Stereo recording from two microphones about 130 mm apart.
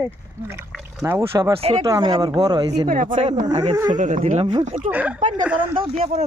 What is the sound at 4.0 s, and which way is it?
Speech, 70° right (ahead or behind).